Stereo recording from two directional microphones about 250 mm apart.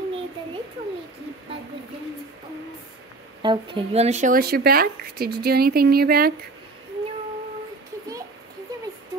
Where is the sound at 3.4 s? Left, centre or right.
Centre; by 6.3 s right.